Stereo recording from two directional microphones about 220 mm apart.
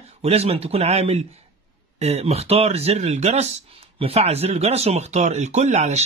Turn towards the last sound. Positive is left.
turn(degrees=-30)  # may be behind; listen again after turning